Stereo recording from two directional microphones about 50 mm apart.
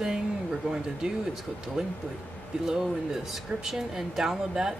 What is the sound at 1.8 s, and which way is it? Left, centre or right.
Speech, centre.